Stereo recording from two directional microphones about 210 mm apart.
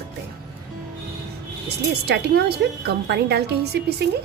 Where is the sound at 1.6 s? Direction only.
50° right (ahead or behind).